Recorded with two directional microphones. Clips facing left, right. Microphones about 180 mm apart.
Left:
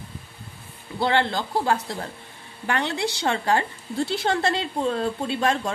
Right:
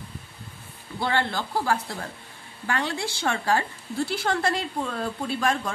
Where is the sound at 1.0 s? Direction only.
20° left (ahead or behind).